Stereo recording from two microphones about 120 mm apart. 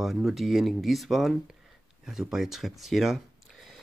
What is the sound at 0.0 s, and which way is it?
Speech, centre (ahead or behind).